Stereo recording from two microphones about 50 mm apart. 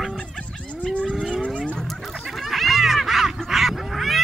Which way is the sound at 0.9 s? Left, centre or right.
Left.